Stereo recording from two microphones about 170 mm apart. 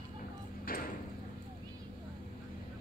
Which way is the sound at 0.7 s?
60° left (ahead or behind).